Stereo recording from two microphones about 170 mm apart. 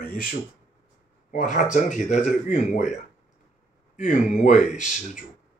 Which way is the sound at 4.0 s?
45° left (ahead or behind).